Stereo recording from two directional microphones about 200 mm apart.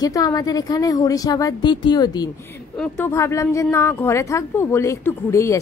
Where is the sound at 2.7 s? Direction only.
10° left (ahead or behind).